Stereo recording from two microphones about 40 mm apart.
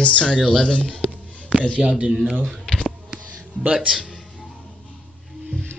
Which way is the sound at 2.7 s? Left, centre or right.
Left.